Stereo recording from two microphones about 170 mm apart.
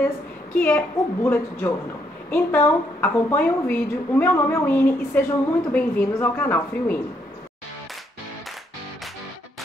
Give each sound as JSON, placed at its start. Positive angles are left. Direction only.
{"t": 0.6, "sound": "a woman's voice", "side_deg": 10}